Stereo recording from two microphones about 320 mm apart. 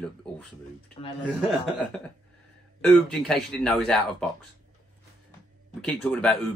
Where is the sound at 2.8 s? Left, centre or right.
Centre.